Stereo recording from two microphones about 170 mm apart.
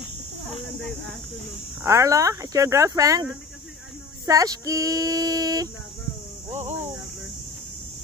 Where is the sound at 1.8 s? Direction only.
15° right (ahead or behind).